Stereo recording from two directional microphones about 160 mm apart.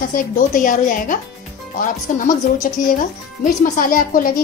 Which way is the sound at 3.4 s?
60° left (ahead or behind).